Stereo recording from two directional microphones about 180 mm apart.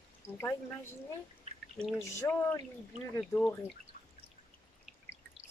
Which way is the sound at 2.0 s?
15° left (ahead or behind).